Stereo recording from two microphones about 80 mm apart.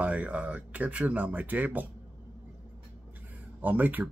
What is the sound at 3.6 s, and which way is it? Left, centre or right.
Speech, right.